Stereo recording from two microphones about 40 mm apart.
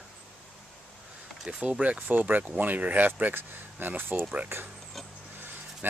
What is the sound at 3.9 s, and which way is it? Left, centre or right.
Speech, right.